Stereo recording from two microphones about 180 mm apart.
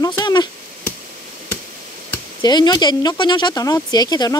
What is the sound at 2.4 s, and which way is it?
Speech, 25° left (ahead or behind).